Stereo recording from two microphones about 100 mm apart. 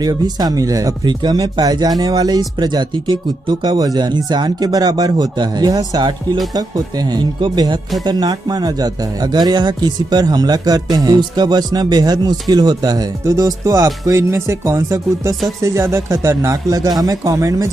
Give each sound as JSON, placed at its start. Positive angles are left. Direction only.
{"t": 0.0, "sound": "speech", "side_deg": -40}